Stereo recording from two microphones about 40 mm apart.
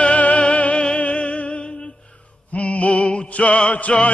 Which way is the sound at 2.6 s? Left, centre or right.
Left.